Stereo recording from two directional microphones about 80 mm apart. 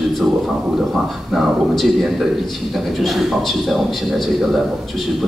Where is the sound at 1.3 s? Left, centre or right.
Centre.